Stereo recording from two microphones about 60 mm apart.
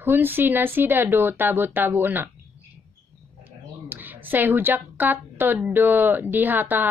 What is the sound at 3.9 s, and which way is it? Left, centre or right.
A woman's voice, right.